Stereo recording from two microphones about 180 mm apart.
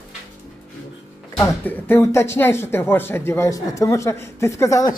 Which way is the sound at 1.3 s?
10° left (ahead or behind).